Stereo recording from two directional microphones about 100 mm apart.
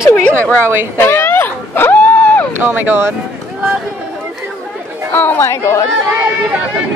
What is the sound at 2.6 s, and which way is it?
Speech, 20° right (ahead or behind).